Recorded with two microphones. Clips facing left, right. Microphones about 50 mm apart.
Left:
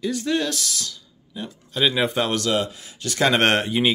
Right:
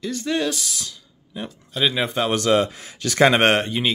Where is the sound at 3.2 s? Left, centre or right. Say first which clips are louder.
Right 2 dB; centre.